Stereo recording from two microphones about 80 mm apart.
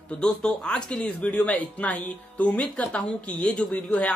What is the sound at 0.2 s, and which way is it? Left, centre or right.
Speech, centre.